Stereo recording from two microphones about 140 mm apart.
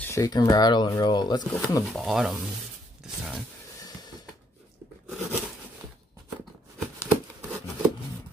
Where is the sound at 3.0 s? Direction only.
Centre (ahead or behind).